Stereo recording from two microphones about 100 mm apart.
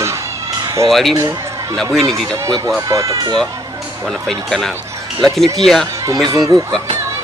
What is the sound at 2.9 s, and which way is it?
Speech, 30° right (ahead or behind).